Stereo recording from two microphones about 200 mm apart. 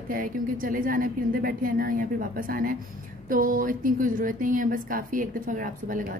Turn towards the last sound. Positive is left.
turn(degrees=-40)  # may be behind; listen again after turning